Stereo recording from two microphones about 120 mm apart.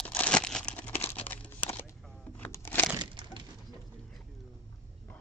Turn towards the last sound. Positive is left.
turn(degrees=-40)  # may be behind; listen again after turning